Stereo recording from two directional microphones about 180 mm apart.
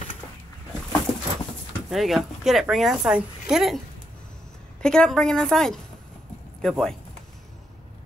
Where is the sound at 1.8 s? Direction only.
Centre (ahead or behind).